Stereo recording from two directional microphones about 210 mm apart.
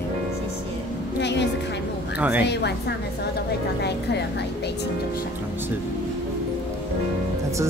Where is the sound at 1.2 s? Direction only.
55° left (ahead or behind).